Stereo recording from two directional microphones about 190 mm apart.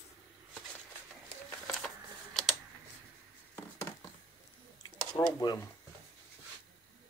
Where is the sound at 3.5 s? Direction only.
10° left (ahead or behind).